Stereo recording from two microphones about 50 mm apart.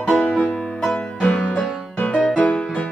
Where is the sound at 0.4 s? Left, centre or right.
Left.